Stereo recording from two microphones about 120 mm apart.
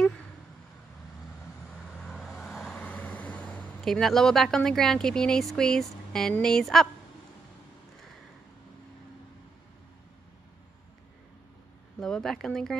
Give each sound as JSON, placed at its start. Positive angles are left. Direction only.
{"t": 2.0, "sound": "vehicle", "side_deg": 5}
{"t": 6.3, "sound": "speech", "side_deg": 5}
{"t": 12.0, "sound": "speech", "side_deg": 5}